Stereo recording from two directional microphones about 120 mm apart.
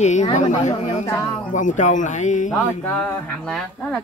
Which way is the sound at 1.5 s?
90° left.